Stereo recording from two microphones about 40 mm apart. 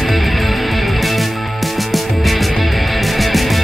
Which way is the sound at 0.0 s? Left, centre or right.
Centre.